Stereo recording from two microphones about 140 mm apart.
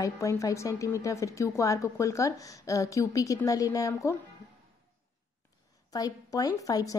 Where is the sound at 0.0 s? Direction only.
25° left (ahead or behind).